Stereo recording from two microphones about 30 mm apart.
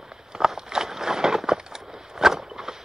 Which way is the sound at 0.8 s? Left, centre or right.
Centre.